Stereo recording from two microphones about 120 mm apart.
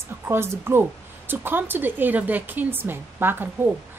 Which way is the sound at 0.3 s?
20° right (ahead or behind).